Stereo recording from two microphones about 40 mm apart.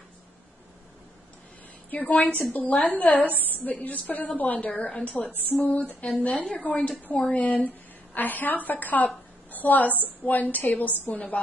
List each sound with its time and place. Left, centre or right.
1.9 s a woman's voice: left
5.5 s a woman's voice: left
7.2 s speech: left
7.4 s a woman's voice: left